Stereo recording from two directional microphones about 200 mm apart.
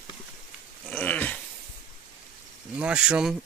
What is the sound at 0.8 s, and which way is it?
Dog, 5° left (ahead or behind).